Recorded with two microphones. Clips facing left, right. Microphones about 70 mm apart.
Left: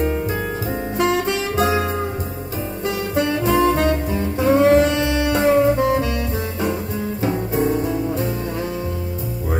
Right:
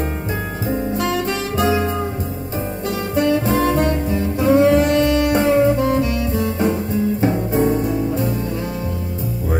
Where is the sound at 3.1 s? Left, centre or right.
Right.